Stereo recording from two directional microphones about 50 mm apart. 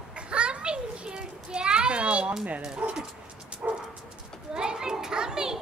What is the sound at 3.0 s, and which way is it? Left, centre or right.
Dog, right.